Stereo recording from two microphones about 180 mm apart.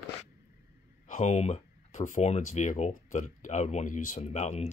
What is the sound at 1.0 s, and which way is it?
Speech, 40° left (ahead or behind).